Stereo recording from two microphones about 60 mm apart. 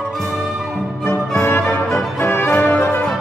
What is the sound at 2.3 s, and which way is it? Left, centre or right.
Music, left.